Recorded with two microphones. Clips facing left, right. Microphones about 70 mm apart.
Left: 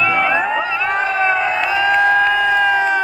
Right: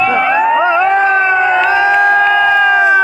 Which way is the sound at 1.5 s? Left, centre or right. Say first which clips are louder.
Right 6 dB; right.